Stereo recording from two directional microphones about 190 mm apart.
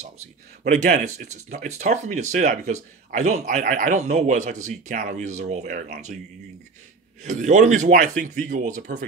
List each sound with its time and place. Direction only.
0.7 s speech: 40° right (ahead or behind)
7.2 s speech: 40° right (ahead or behind)